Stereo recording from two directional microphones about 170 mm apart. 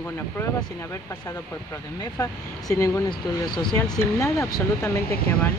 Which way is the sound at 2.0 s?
20° left (ahead or behind).